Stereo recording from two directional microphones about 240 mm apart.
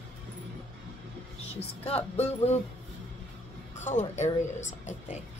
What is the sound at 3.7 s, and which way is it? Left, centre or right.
Speech, left.